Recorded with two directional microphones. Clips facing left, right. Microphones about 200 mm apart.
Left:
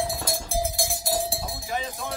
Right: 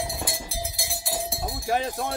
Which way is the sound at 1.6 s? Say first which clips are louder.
Right 7 dB; 60° right (ahead or behind).